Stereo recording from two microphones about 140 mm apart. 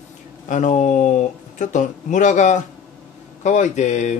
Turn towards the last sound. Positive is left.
turn(degrees=60)  # may be behind; listen again after turning